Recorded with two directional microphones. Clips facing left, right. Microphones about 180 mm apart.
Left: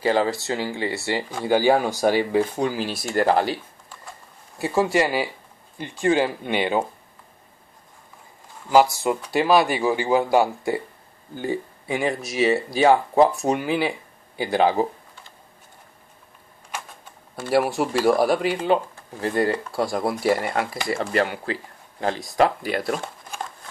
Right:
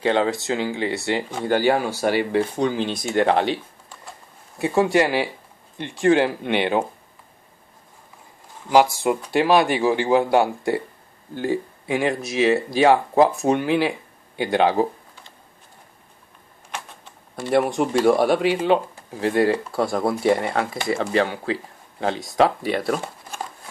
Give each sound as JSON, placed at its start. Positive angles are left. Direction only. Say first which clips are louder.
{"t": 0.0, "sound": "speech", "louder": "right 1 dB", "side_deg": 5}
{"t": 1.4, "sound": "speech", "louder": "left 2 dB", "side_deg": 10}
{"t": 8.7, "sound": "speech", "louder": "right 1 dB", "side_deg": 0}
{"t": 17.5, "sound": "speech", "louder": "right 1 dB", "side_deg": 5}